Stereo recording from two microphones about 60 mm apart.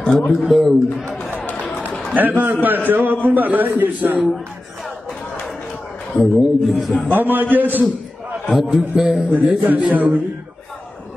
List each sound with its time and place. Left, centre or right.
0.3 s a man's voice: centre
2.1 s a man's voice: right
6.1 s a man's voice: centre
7.1 s a man's voice: right
8.7 s a man's voice: centre
9.3 s speech: right